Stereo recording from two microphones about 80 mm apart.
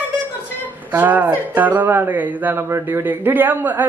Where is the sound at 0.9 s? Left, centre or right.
Right.